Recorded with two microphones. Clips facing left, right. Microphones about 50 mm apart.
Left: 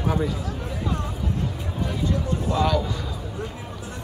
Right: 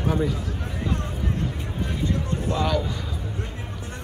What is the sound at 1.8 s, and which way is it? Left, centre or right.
Speech, right.